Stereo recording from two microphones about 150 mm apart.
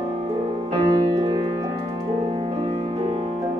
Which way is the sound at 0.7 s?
30° right (ahead or behind).